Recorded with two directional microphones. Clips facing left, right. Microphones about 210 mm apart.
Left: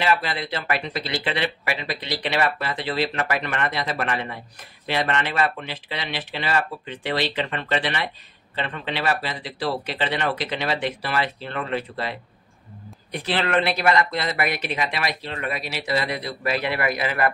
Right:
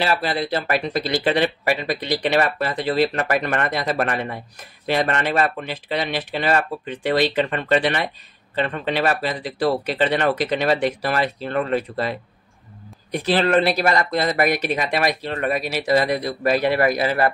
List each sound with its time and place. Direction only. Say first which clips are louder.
0.0 s speech: right 2 dB; 35° right (ahead or behind)